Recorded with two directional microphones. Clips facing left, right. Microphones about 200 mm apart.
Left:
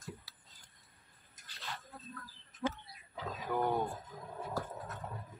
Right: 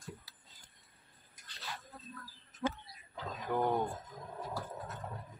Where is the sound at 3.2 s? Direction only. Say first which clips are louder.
Right 1 dB; centre (ahead or behind).